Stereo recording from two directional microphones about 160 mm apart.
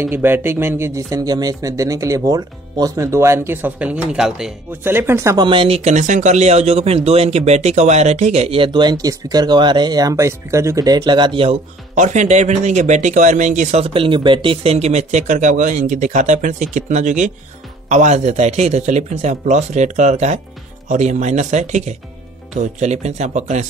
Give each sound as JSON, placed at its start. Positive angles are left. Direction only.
{"t": 0.1, "sound": "speech", "side_deg": -15}
{"t": 5.5, "sound": "speech", "side_deg": -35}
{"t": 11.9, "sound": "speech", "side_deg": -50}